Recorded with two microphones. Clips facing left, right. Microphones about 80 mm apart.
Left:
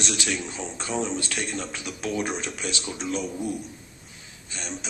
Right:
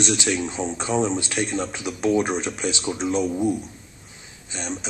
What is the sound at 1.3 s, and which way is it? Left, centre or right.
Speech, centre.